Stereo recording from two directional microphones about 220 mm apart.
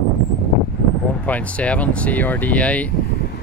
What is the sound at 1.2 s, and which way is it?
Speech, 5° left (ahead or behind).